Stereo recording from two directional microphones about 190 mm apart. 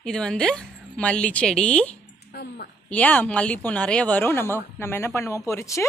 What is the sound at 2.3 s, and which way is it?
Speech, 55° left (ahead or behind).